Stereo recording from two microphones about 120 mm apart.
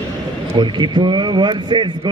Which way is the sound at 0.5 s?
40° right (ahead or behind).